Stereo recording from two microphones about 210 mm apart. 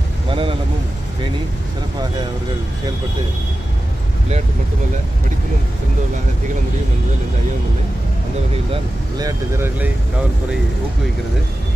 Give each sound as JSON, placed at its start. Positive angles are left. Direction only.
{"t": 0.3, "sound": "vehicle", "side_deg": -25}
{"t": 9.2, "sound": "speech", "side_deg": -10}